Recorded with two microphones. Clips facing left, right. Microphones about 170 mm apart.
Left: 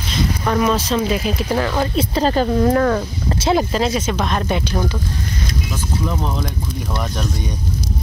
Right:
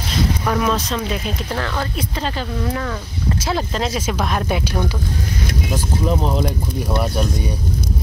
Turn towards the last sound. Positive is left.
turn(degrees=-10)  # may be behind; listen again after turning